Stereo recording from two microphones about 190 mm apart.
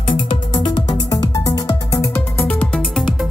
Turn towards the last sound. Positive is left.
turn(degrees=0)  # may be behind; listen again after turning